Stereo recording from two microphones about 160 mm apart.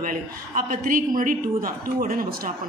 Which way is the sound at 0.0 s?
60° right (ahead or behind).